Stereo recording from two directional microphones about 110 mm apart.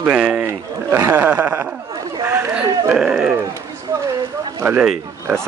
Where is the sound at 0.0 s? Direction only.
10° right (ahead or behind).